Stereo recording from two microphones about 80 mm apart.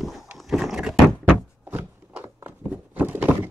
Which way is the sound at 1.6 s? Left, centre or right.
Centre.